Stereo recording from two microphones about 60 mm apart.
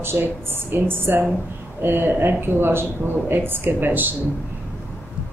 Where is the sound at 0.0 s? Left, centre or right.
Right.